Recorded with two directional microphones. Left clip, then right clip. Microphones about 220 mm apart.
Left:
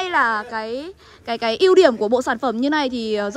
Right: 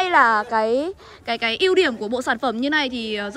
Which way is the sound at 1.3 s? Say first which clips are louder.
Left 3 dB; 20° left (ahead or behind).